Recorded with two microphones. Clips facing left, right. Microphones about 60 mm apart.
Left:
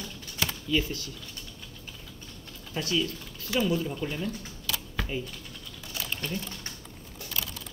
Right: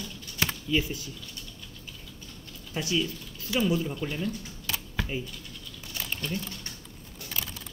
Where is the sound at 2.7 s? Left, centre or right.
Centre.